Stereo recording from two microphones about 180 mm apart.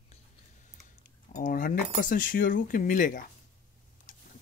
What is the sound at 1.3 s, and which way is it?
Speech, 50° left (ahead or behind).